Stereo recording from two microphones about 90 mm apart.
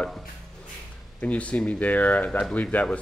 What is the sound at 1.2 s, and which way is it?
Speech, 15° left (ahead or behind).